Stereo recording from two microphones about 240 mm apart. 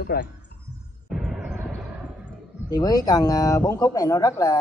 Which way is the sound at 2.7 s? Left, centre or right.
Centre.